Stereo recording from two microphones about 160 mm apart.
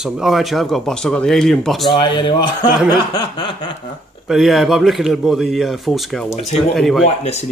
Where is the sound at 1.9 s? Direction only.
30° left (ahead or behind).